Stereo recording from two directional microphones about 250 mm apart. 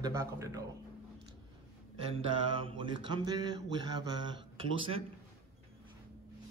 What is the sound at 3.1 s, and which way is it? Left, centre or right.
Speech, centre.